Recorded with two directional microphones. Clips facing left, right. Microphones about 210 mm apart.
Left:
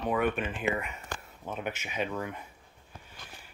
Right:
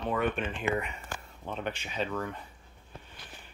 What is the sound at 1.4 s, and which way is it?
Speech, 10° left (ahead or behind).